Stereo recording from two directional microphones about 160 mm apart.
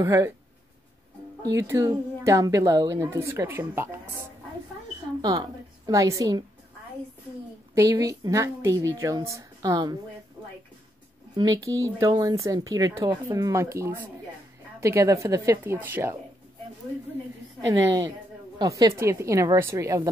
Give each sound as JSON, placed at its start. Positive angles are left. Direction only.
{"t": 0.0, "sound": "speech", "side_deg": -20}
{"t": 1.4, "sound": "a woman's voice", "side_deg": -20}
{"t": 5.2, "sound": "speech", "side_deg": -25}
{"t": 7.7, "sound": "speech", "side_deg": -20}
{"t": 10.4, "sound": "music", "side_deg": -25}
{"t": 11.3, "sound": "a woman's voice", "side_deg": -20}
{"t": 17.6, "sound": "speech", "side_deg": -25}